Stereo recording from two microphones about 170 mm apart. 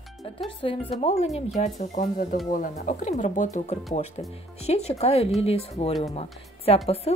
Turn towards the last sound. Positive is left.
turn(degrees=35)  # may be behind; listen again after turning